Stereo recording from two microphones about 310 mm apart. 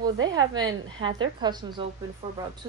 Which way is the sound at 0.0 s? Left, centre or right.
Centre.